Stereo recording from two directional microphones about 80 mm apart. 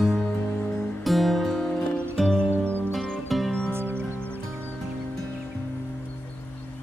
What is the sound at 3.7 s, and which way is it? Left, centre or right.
Music, right.